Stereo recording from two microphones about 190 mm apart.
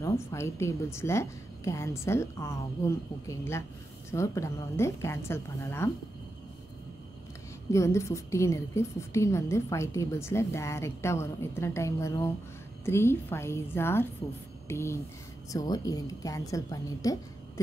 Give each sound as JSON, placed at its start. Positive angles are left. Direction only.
{"t": 0.0, "sound": "a woman's voice", "side_deg": 15}
{"t": 7.7, "sound": "a woman's voice", "side_deg": 15}